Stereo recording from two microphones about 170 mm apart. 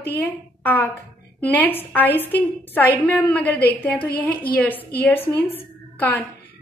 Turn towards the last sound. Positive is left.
turn(degrees=10)  # may be behind; listen again after turning